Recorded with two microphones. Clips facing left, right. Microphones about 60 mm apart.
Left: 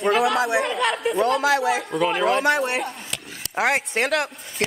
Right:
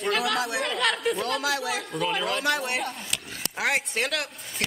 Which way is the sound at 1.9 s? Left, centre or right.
Left.